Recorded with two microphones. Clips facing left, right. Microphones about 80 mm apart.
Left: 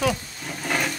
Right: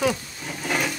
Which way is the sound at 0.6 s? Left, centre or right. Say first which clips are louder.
Even; centre.